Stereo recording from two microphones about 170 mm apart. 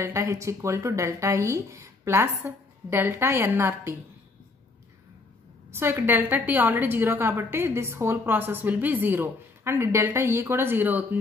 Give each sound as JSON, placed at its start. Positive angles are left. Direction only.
{"t": 0.0, "sound": "a woman's voice", "side_deg": -15}
{"t": 5.7, "sound": "a woman's voice", "side_deg": -15}